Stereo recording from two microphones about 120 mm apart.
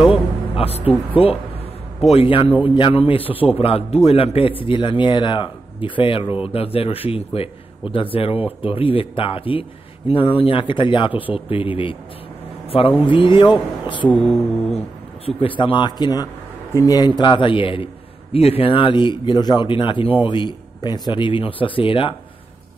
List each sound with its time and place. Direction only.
0.1 s a man's voice: 55° left (ahead or behind)
13.0 s speech: 45° left (ahead or behind)
14.1 s mantra: centre (ahead or behind)
15.2 s a man's voice: 45° left (ahead or behind)